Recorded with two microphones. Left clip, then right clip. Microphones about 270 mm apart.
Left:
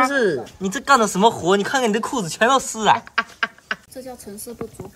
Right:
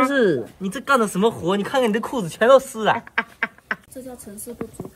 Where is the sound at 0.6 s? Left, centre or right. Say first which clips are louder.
Left 5 dB; centre.